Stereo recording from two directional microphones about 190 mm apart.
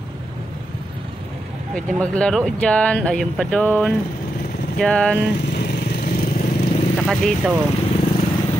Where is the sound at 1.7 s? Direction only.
Centre (ahead or behind).